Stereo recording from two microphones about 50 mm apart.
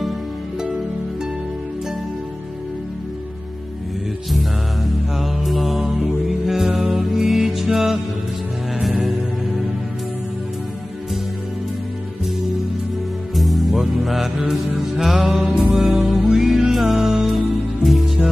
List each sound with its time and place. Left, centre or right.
4.3 s music: centre
9.0 s music: centre
13.3 s music: centre